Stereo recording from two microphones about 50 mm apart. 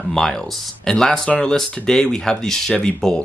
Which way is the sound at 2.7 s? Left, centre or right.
Left.